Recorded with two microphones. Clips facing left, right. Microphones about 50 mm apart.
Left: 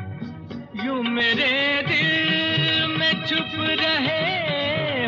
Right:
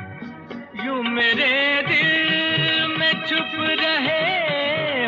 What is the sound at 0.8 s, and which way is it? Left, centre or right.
Music of bollywood, right.